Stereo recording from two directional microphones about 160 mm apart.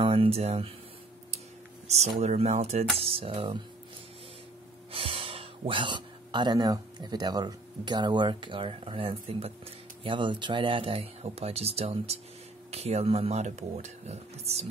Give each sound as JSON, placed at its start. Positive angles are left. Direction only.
{"t": 0.0, "sound": "speech", "side_deg": -35}
{"t": 1.9, "sound": "speech", "side_deg": -40}
{"t": 4.9, "sound": "speech", "side_deg": -35}